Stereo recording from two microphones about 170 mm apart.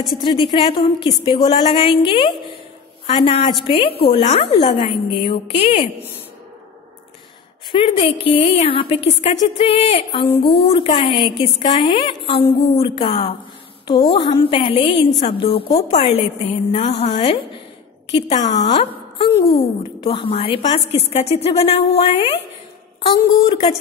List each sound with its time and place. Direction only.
0.2 s a woman's voice: 30° left (ahead or behind)
7.7 s a woman's voice: 30° left (ahead or behind)
18.1 s a woman's voice: 90° left
18.7 s a woman's voice: 30° left (ahead or behind)
23.4 s a woman's voice: 30° left (ahead or behind)